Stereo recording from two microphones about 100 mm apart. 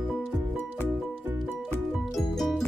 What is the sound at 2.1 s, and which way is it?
Music, centre (ahead or behind).